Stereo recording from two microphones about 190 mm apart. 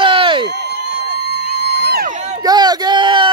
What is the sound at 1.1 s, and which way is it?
Music, 60° right (ahead or behind).